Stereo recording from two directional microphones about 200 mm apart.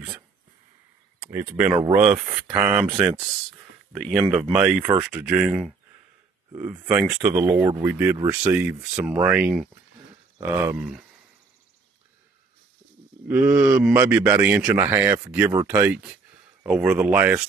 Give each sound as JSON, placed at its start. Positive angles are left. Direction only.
{"t": 1.2, "sound": "a man's voice", "side_deg": -10}
{"t": 2.9, "sound": "speech", "side_deg": -25}
{"t": 3.9, "sound": "a man's voice", "side_deg": 0}
{"t": 13.3, "sound": "a man's voice", "side_deg": -5}